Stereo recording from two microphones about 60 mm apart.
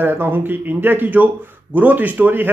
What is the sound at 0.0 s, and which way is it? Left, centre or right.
Speech, right.